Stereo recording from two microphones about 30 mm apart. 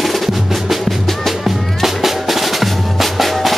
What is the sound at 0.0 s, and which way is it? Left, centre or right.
Music, centre.